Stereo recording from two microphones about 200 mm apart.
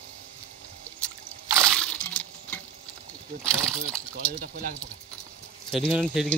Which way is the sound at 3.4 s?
5° left (ahead or behind).